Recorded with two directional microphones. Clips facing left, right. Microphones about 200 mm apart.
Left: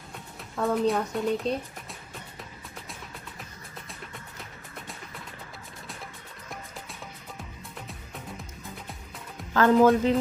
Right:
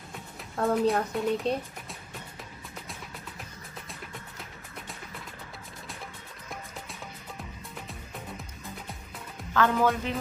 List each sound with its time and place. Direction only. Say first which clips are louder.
0.1 s speech: even; centre (ahead or behind)
9.5 s speech: left 6 dB; 40° left (ahead or behind)